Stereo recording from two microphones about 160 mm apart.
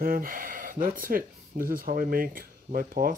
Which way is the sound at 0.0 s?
65° right (ahead or behind).